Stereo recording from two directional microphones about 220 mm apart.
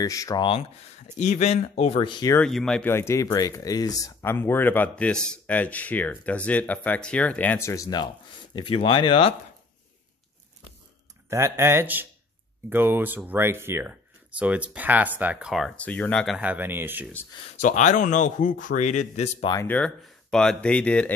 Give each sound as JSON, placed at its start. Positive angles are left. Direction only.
{"t": 0.0, "sound": "speech", "side_deg": 15}
{"t": 2.4, "sound": "speech", "side_deg": 5}
{"t": 11.2, "sound": "speech", "side_deg": -10}
{"t": 17.1, "sound": "speech", "side_deg": 10}
{"t": 17.6, "sound": "speech", "side_deg": 35}
{"t": 19.5, "sound": "speech", "side_deg": 10}